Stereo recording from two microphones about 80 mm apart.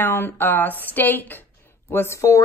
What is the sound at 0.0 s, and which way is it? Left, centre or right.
A woman's voice, left.